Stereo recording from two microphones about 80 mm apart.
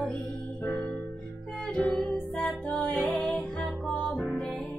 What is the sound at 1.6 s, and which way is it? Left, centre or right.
Music, centre.